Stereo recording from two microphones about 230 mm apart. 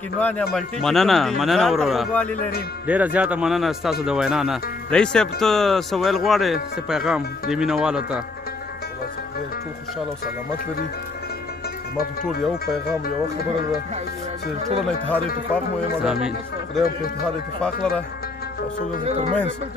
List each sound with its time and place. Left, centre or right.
0.2 s speech: centre
12.0 s speech: left
14.9 s speech: centre
19.0 s speech: right